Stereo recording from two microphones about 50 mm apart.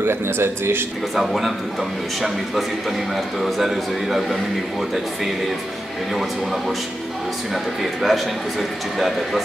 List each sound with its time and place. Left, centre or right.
0.0 s speech: right
1.1 s a man's voice: centre
7.5 s a man's voice: centre